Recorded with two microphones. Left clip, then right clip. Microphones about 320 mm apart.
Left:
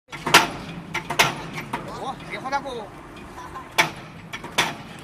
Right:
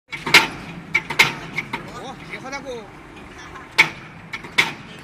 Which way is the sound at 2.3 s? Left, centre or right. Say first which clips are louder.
Left 5 dB; left.